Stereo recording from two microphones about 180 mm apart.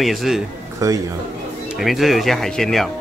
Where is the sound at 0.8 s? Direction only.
15° right (ahead or behind).